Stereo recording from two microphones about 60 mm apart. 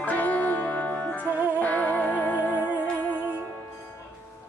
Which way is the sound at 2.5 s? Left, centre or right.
Right.